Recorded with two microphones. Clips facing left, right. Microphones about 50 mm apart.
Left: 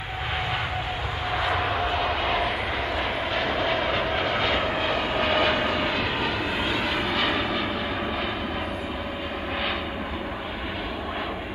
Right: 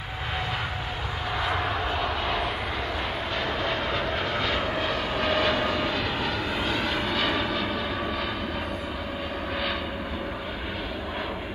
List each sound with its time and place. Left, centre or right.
3.9 s vehicle: left